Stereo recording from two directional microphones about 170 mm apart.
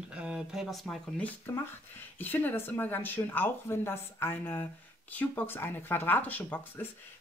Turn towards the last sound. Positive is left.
turn(degrees=10)  # may be behind; listen again after turning